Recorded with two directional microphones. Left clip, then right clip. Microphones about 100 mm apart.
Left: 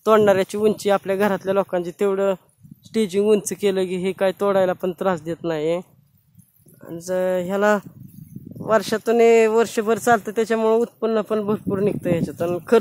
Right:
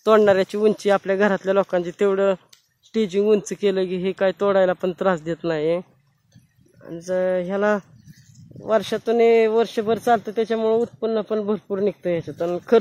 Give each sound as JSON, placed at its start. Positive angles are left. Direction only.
{"t": 0.0, "sound": "speech", "side_deg": 5}
{"t": 2.9, "sound": "speech", "side_deg": 15}
{"t": 8.6, "sound": "speech", "side_deg": 30}